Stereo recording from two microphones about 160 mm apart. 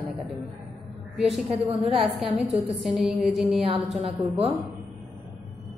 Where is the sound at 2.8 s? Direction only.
Centre (ahead or behind).